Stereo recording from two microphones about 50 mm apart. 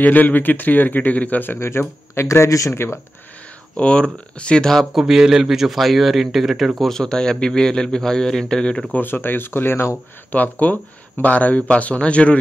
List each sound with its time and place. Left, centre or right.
0.0 s a man's voice: left
1.6 s speech: left
3.7 s a man's voice: left
4.9 s speech: centre
6.8 s a man's voice: centre
8.9 s speech: left
10.3 s a man's voice: left